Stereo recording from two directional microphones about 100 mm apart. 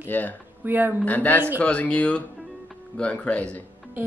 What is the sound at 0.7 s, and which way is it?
Speech, 20° right (ahead or behind).